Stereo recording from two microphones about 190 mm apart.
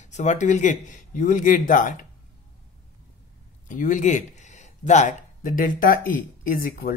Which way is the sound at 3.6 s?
45° left (ahead or behind).